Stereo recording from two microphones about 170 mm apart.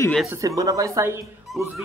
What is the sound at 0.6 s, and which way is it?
Speech, 20° right (ahead or behind).